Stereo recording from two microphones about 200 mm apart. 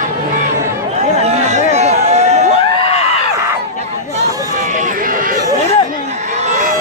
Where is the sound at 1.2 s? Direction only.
35° right (ahead or behind).